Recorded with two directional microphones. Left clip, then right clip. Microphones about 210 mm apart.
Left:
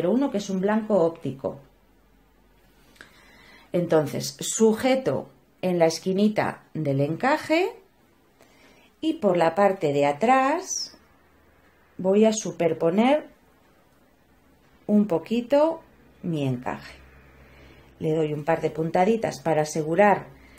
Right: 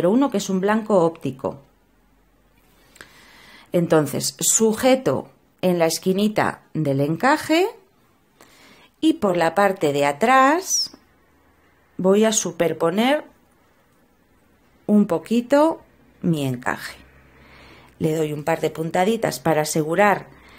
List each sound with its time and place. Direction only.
0.0 s speech: 30° right (ahead or behind)
3.0 s a sound: 25° right (ahead or behind)
3.7 s a woman's voice: 25° right (ahead or behind)
9.0 s speech: 35° right (ahead or behind)
12.0 s speech: 35° right (ahead or behind)
14.9 s speech: 30° right (ahead or behind)
17.9 s speech: 40° right (ahead or behind)